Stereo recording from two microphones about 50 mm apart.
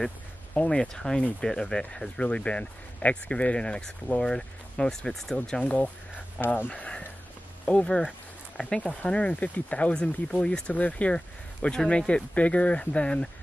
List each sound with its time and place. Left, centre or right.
0.7 s speech: centre
6.4 s speech: left
6.8 s speech: left
7.6 s speech: centre
12.1 s speech: left